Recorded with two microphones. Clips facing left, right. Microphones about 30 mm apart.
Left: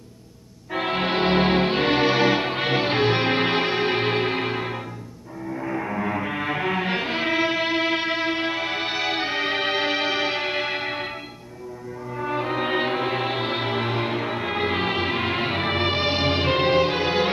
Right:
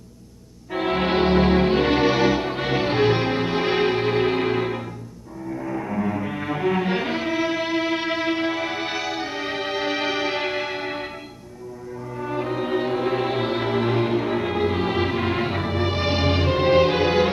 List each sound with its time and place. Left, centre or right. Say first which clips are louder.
0.7 s music: right 2 dB; centre
1.2 s music: right 1 dB; left
3.6 s music: right 2 dB; centre
3.9 s music: right 2 dB; left
9.1 s music: left 3 dB; left
12.2 s music: left 1 dB; left
14.6 s music: left 1 dB; left
16.0 s music: even; centre
16.7 s music: right 3 dB; centre